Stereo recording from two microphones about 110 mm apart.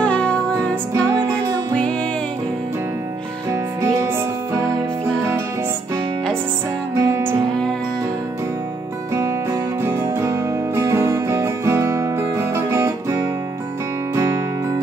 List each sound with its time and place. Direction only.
0.0 s music: 10° left (ahead or behind)
0.9 s music: 30° right (ahead or behind)
4.6 s music: 5° left (ahead or behind)
7.0 s music: 25° right (ahead or behind)
9.1 s music: 25° right (ahead or behind)